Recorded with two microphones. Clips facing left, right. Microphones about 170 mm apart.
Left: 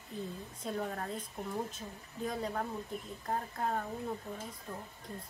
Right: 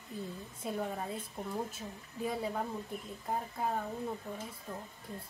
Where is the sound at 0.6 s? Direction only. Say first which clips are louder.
Right 1 dB; 5° right (ahead or behind).